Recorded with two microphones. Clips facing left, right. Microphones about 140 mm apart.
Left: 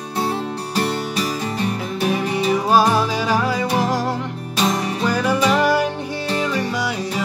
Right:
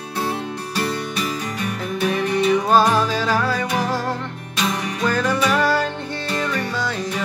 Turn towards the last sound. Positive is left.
turn(degrees=10)  # may be behind; listen again after turning